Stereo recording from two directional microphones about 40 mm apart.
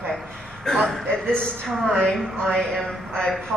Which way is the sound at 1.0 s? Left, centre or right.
Left.